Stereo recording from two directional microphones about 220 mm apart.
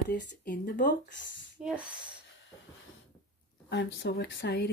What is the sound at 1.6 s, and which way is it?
Speech, 5° right (ahead or behind).